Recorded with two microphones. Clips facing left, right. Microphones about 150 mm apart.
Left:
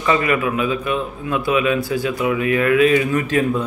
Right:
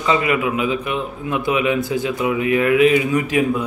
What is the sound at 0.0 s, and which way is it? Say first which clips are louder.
A man's voice: even; 20° right (ahead or behind).